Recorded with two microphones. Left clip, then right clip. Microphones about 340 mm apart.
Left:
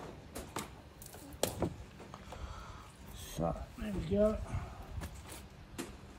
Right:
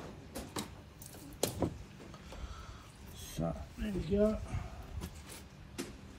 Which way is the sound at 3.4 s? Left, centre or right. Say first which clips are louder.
Left 2 dB; centre.